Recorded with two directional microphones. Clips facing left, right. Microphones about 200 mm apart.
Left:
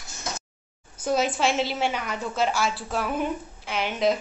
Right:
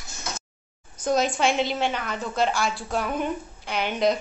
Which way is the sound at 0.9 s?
5° left (ahead or behind).